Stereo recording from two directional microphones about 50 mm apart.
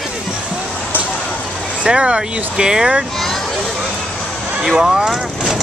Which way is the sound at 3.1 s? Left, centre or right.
Centre.